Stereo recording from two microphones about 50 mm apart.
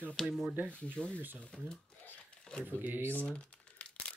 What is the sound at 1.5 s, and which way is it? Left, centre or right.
Speech, centre.